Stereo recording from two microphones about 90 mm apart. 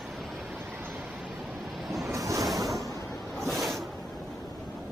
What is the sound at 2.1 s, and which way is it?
Ocean, 35° right (ahead or behind).